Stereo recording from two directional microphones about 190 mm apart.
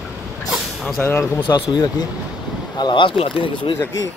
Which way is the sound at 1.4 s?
20° left (ahead or behind).